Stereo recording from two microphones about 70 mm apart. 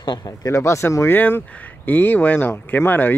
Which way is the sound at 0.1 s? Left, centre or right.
Left.